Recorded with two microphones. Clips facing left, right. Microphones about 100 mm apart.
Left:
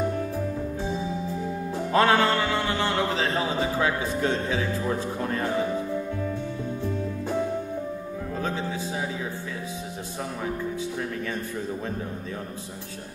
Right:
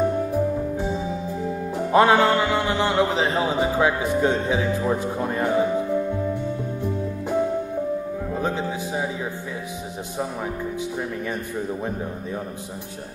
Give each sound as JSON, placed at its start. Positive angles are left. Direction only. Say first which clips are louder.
{"t": 0.1, "sound": "music", "louder": "right 6 dB", "side_deg": -15}
{"t": 1.8, "sound": "speech", "louder": "right 4 dB", "side_deg": -20}
{"t": 6.8, "sound": "music", "louder": "right 2 dB", "side_deg": -15}